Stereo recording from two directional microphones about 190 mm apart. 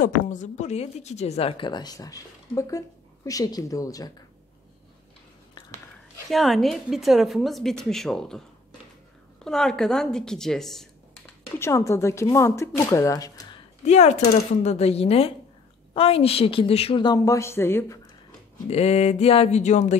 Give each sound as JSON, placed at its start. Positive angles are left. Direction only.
{"t": 0.0, "sound": "speech", "side_deg": 40}
{"t": 6.2, "sound": "a woman's voice", "side_deg": 0}
{"t": 9.4, "sound": "a woman's voice", "side_deg": 5}
{"t": 11.6, "sound": "speech", "side_deg": 15}
{"t": 13.8, "sound": "a woman's voice", "side_deg": 35}
{"t": 18.7, "sound": "speech", "side_deg": 35}